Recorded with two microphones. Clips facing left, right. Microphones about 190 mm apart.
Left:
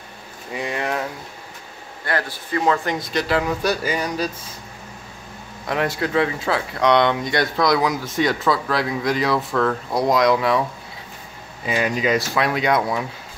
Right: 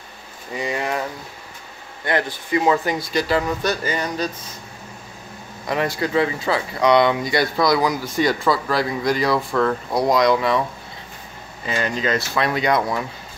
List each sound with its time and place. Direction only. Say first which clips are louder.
0.5 s speech: right 1 dB; centre (ahead or behind)
2.0 s a man's voice: right 3 dB; 20° right (ahead or behind)
2.6 s speech: even; 5° right (ahead or behind)
5.7 s speech: even; centre (ahead or behind)
11.6 s speech: left 2 dB; 10° left (ahead or behind)